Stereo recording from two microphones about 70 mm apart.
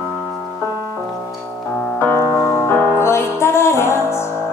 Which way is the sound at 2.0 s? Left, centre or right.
Left.